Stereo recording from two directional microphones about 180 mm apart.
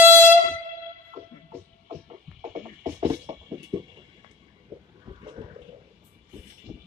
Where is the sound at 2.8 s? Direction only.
25° right (ahead or behind).